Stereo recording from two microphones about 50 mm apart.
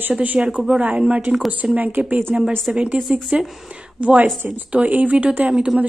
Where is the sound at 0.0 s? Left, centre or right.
Right.